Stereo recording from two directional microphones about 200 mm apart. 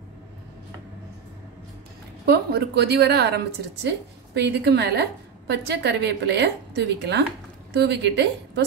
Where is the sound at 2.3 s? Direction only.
55° right (ahead or behind).